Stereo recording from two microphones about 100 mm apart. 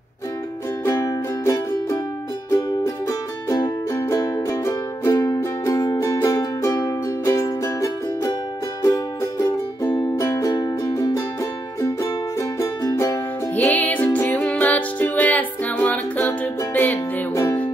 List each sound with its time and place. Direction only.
0.8 s music: 30° left (ahead or behind)
13.6 s music: 15° left (ahead or behind)